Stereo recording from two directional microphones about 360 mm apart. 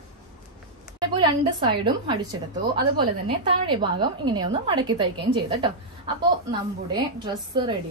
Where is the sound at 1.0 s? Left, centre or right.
Centre.